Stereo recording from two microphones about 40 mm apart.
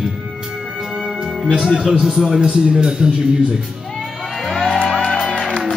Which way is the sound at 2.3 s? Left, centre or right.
Right.